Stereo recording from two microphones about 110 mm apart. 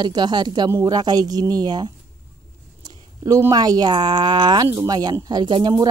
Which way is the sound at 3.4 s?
35° right (ahead or behind).